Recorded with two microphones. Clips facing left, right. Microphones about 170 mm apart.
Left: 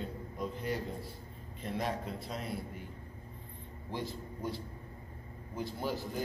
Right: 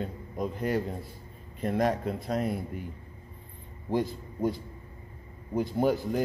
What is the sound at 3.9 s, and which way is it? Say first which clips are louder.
Speech: right 10 dB; 50° right (ahead or behind).